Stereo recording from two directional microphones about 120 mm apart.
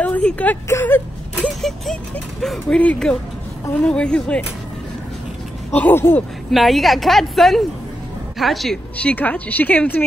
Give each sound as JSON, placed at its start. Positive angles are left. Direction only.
{"t": 0.0, "sound": "speech", "side_deg": 10}
{"t": 0.7, "sound": "a sound", "side_deg": 20}
{"t": 1.5, "sound": "a sound", "side_deg": 5}
{"t": 2.4, "sound": "a woman's voice", "side_deg": 5}
{"t": 5.8, "sound": "a woman's voice", "side_deg": 20}
{"t": 6.5, "sound": "a woman's voice", "side_deg": 0}
{"t": 8.9, "sound": "a woman's voice", "side_deg": 10}